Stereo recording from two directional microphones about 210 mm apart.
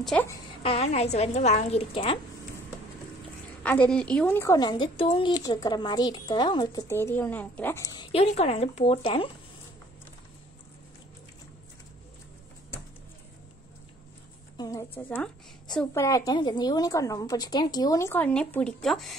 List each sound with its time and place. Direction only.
0.0 s a woman's voice: centre (ahead or behind)
0.6 s a woman's voice: 30° left (ahead or behind)
3.6 s a woman's voice: 5° left (ahead or behind); by 9.3 s 25° left (ahead or behind)
14.6 s a woman's voice: 15° left (ahead or behind)